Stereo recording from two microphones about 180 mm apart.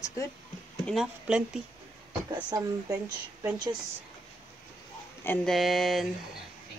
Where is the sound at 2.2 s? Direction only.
20° right (ahead or behind).